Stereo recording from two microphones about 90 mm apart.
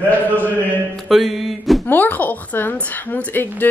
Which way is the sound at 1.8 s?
20° left (ahead or behind).